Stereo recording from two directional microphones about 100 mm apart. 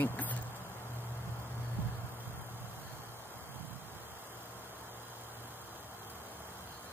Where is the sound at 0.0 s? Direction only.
15° left (ahead or behind).